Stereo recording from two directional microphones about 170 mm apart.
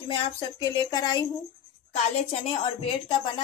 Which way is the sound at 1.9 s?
40° left (ahead or behind).